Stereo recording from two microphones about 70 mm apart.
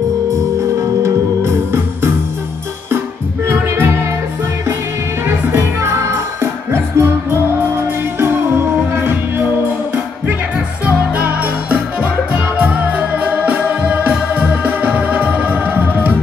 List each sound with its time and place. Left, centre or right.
1.0 s music: right
3.4 s music: right
5.2 s music: right
10.9 s music: right